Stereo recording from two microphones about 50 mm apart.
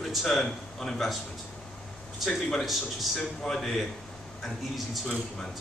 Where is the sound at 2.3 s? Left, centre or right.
Centre.